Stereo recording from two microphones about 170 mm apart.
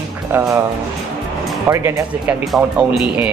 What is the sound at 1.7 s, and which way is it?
Speech, 15° right (ahead or behind).